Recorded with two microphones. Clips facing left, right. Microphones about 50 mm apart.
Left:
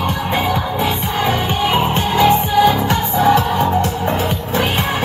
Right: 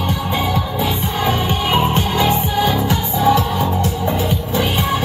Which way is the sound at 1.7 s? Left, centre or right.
Centre.